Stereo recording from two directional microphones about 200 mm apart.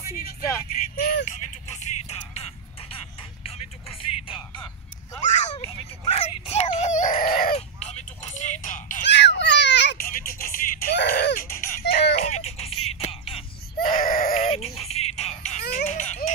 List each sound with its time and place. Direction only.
0.0 s vehicle: 50° left (ahead or behind)
0.9 s music: 40° left (ahead or behind)
6.0 s chicken: 30° left (ahead or behind)
7.5 s a sound: 35° left (ahead or behind)
9.0 s a sound: 60° left (ahead or behind)
12.2 s music: 30° left (ahead or behind)
13.7 s baby cry: 45° left (ahead or behind)
14.4 s music: 30° left (ahead or behind)
15.7 s a sound: 35° left (ahead or behind)